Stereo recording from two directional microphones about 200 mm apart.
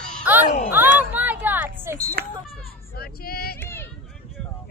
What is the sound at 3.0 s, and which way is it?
Female singing, 50° left (ahead or behind).